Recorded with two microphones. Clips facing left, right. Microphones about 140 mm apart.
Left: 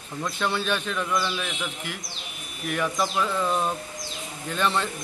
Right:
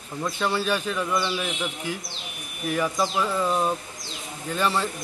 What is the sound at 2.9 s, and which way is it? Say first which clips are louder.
Speech: right 1 dB; 25° right (ahead or behind).